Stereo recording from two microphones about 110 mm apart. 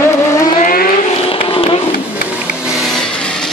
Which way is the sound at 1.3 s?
55° left (ahead or behind).